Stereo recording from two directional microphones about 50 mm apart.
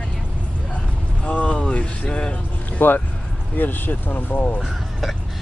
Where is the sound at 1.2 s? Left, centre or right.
Left.